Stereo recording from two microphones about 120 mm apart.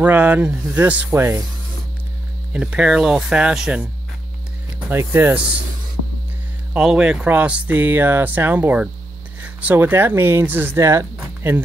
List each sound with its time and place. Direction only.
0.0 s speech: 15° right (ahead or behind)
2.5 s speech: 10° right (ahead or behind)
6.7 s speech: 5° right (ahead or behind); by 11.1 s 25° right (ahead or behind)
11.1 s music: 15° right (ahead or behind)